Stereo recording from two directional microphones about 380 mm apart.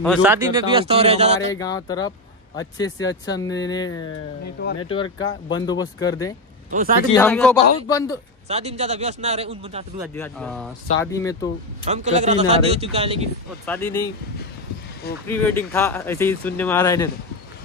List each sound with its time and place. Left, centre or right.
0.0 s a man's voice: centre
1.5 s speech: centre
8.5 s a man's voice: centre
10.0 s speech: centre
11.8 s a man's voice: centre
13.7 s speech: centre
15.2 s speech: centre